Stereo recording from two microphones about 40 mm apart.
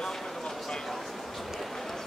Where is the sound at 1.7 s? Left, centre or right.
Centre.